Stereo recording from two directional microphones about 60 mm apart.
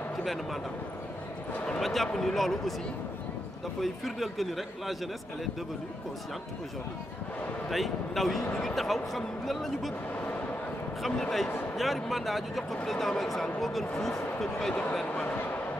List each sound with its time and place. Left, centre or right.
0.2 s speech: centre
1.8 s speech: centre
3.8 s speech: centre
7.7 s speech: centre
11.0 s speech: centre
15.2 s a sound: left